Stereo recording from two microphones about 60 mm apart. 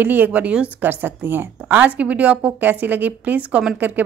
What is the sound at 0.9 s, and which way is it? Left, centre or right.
Speech, right.